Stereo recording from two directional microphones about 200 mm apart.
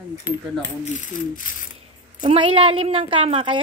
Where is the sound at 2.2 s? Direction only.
25° right (ahead or behind).